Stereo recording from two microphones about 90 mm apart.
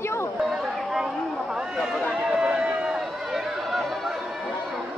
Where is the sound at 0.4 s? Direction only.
5° right (ahead or behind).